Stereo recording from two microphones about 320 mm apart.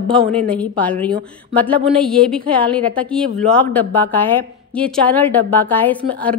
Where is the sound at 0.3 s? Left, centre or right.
Centre.